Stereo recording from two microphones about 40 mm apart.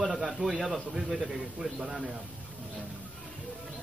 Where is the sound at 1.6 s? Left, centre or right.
Centre.